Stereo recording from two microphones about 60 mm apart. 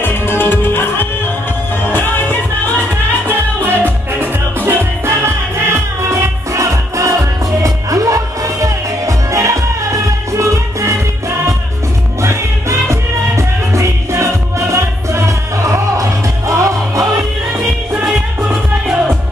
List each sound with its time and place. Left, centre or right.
0.0 s music: left
3.3 s music: right
4.6 s music: right
17.9 s music: right